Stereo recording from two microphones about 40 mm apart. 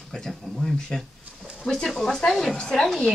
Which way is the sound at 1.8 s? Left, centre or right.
Centre.